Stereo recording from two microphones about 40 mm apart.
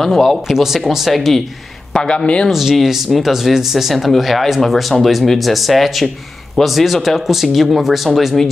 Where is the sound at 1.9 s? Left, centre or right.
Left.